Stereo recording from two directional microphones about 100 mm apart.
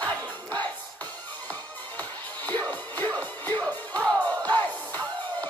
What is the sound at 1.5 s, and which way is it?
Music, 15° left (ahead or behind).